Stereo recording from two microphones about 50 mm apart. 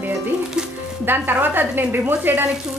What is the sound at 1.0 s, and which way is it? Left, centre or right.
Speech, right.